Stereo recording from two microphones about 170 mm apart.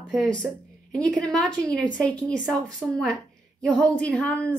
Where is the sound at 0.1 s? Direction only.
Centre (ahead or behind).